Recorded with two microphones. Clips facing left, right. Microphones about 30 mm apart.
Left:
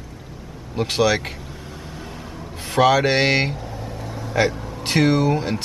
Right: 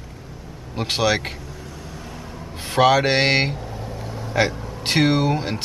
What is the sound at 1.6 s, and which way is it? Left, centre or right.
Vehicle, left.